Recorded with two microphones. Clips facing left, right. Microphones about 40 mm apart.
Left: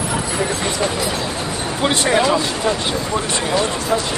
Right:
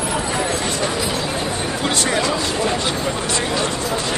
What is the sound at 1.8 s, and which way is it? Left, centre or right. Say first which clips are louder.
Speech: left 5 dB; left.